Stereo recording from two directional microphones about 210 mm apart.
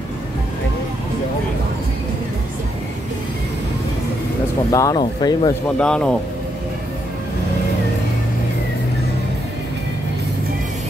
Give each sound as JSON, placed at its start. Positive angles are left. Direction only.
{"t": 4.6, "sound": "speech", "side_deg": 15}
{"t": 5.8, "sound": "speech", "side_deg": 5}